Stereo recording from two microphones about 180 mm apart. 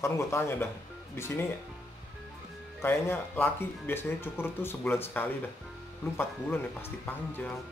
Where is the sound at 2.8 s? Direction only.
15° left (ahead or behind).